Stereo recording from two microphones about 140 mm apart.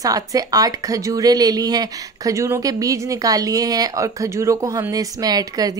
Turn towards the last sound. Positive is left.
turn(degrees=-25)  # may be behind; listen again after turning